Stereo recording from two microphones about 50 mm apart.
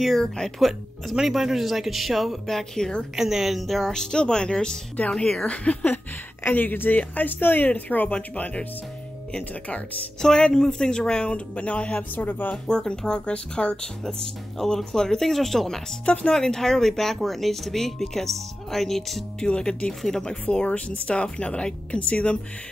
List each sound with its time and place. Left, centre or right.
0.6 s speech: centre
3.2 s speech: centre
5.5 s speech: left
6.4 s speech: left
10.2 s speech: centre
12.2 s speech: left
12.6 s speech: centre
16.1 s speech: centre
19.4 s speech: centre
19.9 s speech: centre
20.4 s speech: left